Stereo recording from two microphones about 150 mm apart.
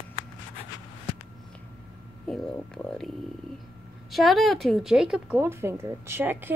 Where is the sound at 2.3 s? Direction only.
5° left (ahead or behind).